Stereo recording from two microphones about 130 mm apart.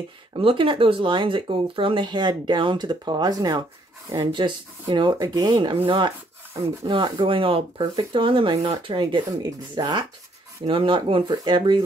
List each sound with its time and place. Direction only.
0.4 s speech: 40° right (ahead or behind)